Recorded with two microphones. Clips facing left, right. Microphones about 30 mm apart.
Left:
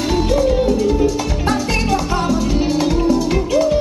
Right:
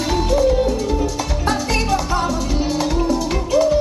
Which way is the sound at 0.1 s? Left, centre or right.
Centre.